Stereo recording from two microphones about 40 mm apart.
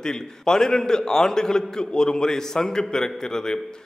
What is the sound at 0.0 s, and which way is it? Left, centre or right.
A man's voice, centre.